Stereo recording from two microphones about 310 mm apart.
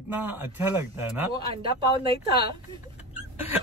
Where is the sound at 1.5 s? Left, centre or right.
Centre.